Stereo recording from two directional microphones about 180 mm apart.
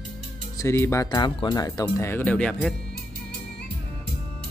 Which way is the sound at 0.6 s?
15° left (ahead or behind).